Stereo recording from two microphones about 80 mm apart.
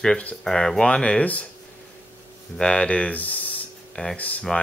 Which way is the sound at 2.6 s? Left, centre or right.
Centre.